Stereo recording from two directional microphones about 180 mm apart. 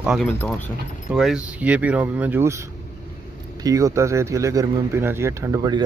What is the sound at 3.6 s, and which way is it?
Speech, 20° right (ahead or behind).